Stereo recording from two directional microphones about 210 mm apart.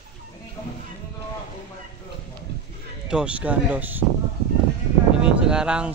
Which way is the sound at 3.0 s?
5° right (ahead or behind).